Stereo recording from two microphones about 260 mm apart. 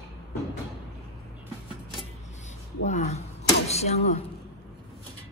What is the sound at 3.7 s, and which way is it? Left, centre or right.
Speech, left.